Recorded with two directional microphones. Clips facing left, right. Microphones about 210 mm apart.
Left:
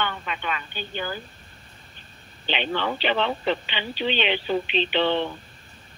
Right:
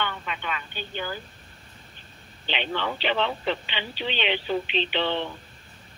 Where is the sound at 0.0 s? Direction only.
50° left (ahead or behind).